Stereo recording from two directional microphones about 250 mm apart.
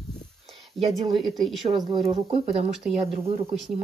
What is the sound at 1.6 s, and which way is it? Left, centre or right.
Speech, right.